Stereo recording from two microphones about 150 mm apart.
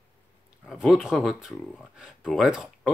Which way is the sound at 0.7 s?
5° right (ahead or behind).